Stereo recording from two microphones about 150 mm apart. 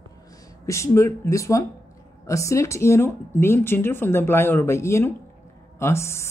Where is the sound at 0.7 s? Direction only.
20° left (ahead or behind).